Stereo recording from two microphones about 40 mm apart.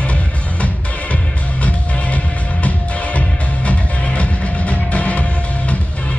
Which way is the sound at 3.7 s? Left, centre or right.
Left.